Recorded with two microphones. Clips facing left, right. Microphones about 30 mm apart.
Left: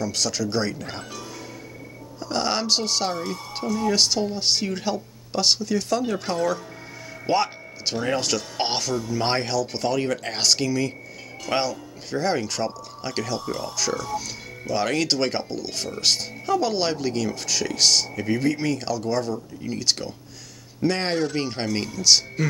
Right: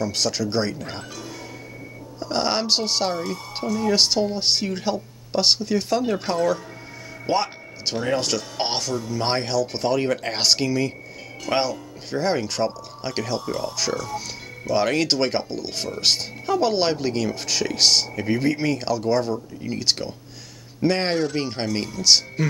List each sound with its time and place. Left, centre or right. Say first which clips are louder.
0.0 s speech: right 2 dB; right
0.7 s speech: right 1 dB; centre
2.1 s speech: right 2 dB; centre
3.6 s speech: right 1 dB; centre
3.9 s speech: right 4 dB; right
6.2 s speech: right 2 dB; centre
7.2 s a sound: left 1 dB; centre
8.2 s speech: even; centre